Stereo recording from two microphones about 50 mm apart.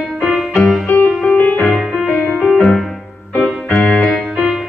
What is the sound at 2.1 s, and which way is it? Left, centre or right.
Music, centre.